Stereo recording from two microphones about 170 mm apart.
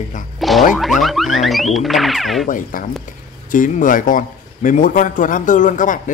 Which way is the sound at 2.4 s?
55° left (ahead or behind).